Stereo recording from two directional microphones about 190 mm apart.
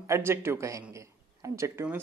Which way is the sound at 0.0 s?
15° right (ahead or behind).